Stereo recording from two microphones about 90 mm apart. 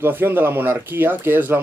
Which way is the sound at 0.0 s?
25° right (ahead or behind).